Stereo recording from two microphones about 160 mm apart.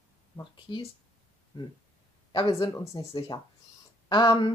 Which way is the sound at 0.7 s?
25° left (ahead or behind).